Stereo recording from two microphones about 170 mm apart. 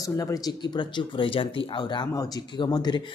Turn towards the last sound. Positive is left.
turn(degrees=25)  # may be behind; listen again after turning